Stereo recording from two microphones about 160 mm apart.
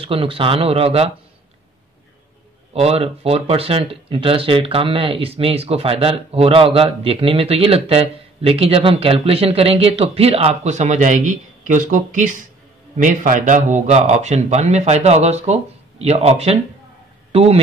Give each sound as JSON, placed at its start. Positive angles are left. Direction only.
{"t": 0.0, "sound": "speech", "side_deg": -35}
{"t": 2.7, "sound": "a man's voice", "side_deg": -40}